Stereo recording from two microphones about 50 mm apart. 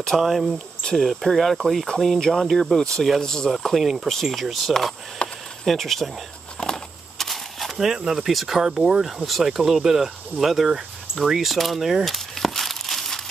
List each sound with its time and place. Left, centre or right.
0.2 s speech: centre
3.5 s speech: centre
5.2 s a sound: left
5.7 s speech: centre
7.2 s a sound: centre
7.8 s speech: centre